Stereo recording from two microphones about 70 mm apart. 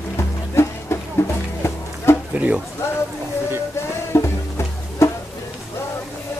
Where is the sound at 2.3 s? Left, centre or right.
Centre.